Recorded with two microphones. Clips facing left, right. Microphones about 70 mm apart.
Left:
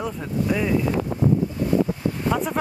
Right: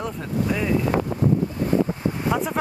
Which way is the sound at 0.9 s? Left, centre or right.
Right.